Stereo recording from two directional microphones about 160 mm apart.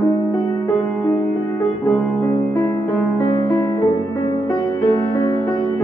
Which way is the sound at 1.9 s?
20° left (ahead or behind).